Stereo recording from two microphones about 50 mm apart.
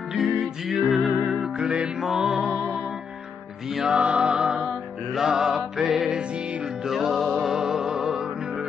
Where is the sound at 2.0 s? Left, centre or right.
Centre.